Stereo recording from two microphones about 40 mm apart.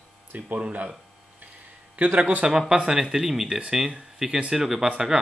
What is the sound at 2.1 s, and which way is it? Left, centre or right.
Speech, right.